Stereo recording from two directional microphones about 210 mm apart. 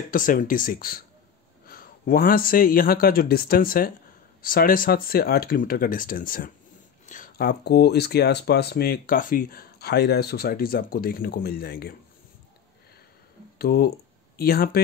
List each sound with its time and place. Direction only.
0.1 s speech: 40° left (ahead or behind)
13.6 s speech: 45° left (ahead or behind)